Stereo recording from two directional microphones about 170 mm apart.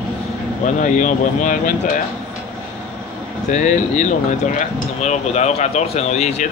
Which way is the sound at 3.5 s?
45° left (ahead or behind).